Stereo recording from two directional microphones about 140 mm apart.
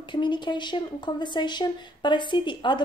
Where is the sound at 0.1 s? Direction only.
35° left (ahead or behind).